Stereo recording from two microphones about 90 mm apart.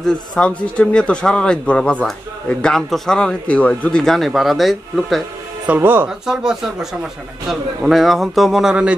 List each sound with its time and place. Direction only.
0.0 s a man's voice: 10° left (ahead or behind)
4.0 s a man's voice: centre (ahead or behind)
5.8 s speech: 25° right (ahead or behind)
6.0 s a man's voice: 5° right (ahead or behind)